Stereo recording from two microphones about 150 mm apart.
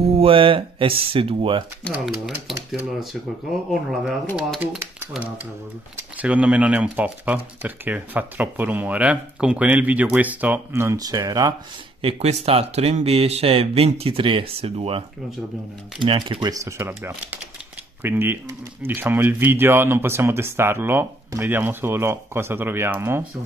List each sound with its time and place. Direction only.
0.1 s speech: 40° right (ahead or behind)
1.9 s speech: centre (ahead or behind)
4.4 s speech: 10° right (ahead or behind); by 11.5 s 25° right (ahead or behind)
12.0 s speech: 45° right (ahead or behind)
16.6 s speech: 20° right (ahead or behind)